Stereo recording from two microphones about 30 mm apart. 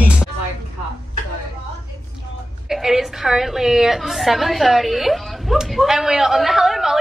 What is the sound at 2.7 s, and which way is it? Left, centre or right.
A woman's voice, centre.